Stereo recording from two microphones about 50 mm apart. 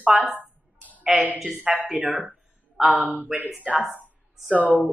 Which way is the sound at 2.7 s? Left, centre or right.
Centre.